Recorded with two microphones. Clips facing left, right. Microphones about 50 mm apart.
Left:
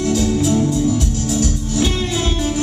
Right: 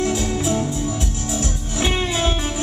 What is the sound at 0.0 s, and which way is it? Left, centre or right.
Music, centre.